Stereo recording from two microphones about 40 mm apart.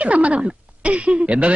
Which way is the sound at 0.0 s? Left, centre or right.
Right.